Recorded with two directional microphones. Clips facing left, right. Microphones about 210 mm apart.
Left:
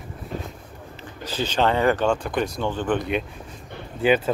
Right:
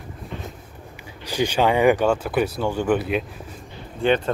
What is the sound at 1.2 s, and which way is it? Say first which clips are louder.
Speech: right 2 dB; 15° right (ahead or behind).